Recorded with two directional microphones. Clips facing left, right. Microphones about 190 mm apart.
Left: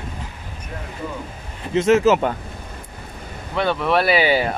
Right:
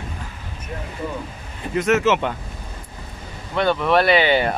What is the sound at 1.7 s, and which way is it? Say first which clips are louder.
Speech: left 3 dB; 30° left (ahead or behind).